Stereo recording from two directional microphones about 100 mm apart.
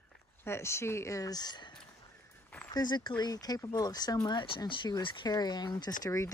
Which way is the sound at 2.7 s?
45° left (ahead or behind).